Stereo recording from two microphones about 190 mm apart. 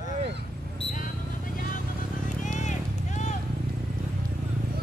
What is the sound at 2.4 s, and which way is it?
Run, 40° left (ahead or behind).